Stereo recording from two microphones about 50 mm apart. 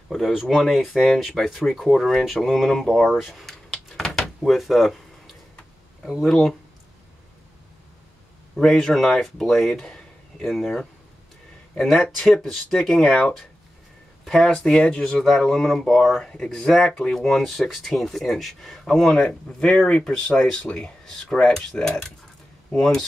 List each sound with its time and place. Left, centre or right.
0.4 s speech: centre
3.1 s a sound: centre
4.1 s door: centre
6.2 s speech: centre
8.5 s speech: centre
11.8 s speech: centre
14.5 s speech: centre
19.1 s speech: centre